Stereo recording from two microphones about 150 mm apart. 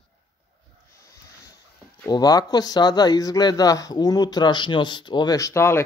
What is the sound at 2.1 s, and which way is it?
Speech, 25° left (ahead or behind).